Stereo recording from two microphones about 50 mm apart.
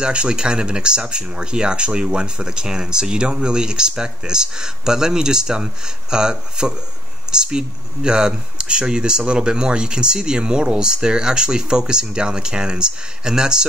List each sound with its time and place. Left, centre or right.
0.0 s speech: centre